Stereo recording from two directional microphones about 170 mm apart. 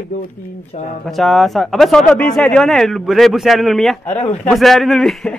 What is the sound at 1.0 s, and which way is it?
Speech, centre (ahead or behind).